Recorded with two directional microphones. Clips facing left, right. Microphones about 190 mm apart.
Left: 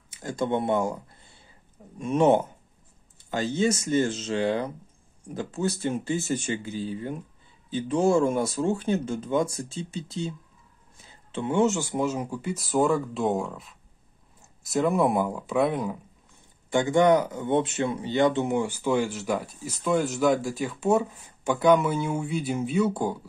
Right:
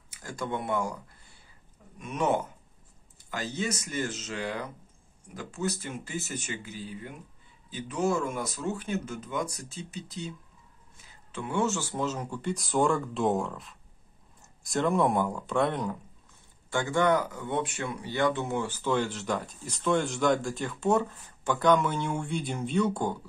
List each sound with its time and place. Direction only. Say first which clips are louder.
0.1 s speech: left 7 dB; 25° left (ahead or behind); by 16.0 s 5° left (ahead or behind)
16.7 s speech: left 5 dB; 20° left (ahead or behind)